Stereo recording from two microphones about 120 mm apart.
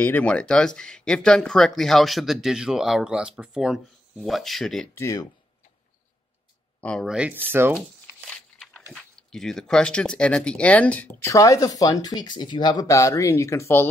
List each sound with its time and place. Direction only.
0.0 s speech: 10° left (ahead or behind)
4.9 s speech: 25° left (ahead or behind)
6.8 s speech: 10° left (ahead or behind)
7.1 s speech: 10° right (ahead or behind)
8.3 s biting: 10° left (ahead or behind)
8.9 s speech: 5° left (ahead or behind)
11.2 s speech: 30° left (ahead or behind)